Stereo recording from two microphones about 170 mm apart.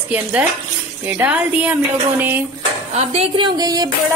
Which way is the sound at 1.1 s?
10° right (ahead or behind).